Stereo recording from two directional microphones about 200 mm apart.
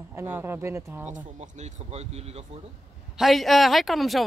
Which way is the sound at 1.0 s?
35° right (ahead or behind).